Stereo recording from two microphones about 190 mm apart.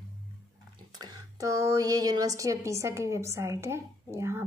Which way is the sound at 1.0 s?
20° right (ahead or behind).